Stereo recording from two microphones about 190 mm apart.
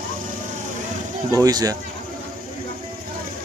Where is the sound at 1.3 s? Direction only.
20° right (ahead or behind).